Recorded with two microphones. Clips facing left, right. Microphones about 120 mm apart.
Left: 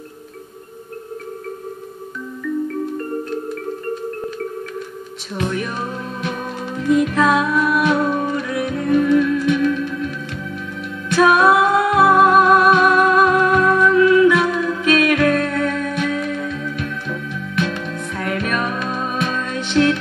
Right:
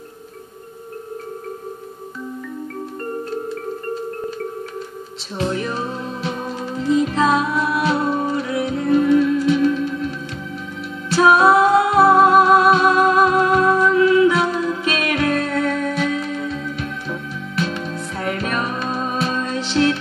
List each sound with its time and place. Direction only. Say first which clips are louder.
5.4 s music: right 1 dB; 30° right (ahead or behind)